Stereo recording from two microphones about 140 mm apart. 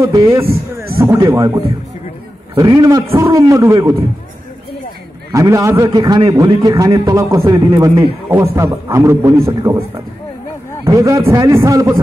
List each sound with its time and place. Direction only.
0.0 s a man's voice: 20° right (ahead or behind)
5.3 s a man's voice: 20° right (ahead or behind)